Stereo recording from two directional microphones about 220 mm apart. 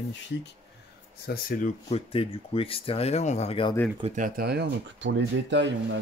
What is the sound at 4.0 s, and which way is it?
Speech, 30° right (ahead or behind).